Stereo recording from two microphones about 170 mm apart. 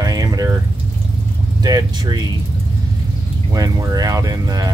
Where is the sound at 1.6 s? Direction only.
20° right (ahead or behind).